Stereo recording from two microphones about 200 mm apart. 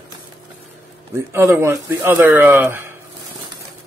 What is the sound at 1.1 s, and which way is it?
Speech, 15° right (ahead or behind).